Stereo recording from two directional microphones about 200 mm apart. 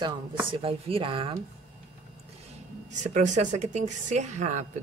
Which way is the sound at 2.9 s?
35° right (ahead or behind).